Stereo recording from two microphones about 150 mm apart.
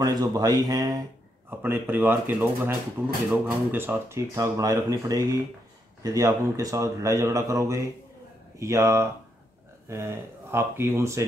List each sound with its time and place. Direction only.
0.0 s speech: 25° right (ahead or behind)